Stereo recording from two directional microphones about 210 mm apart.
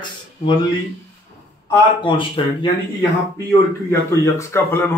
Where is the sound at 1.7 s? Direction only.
25° left (ahead or behind).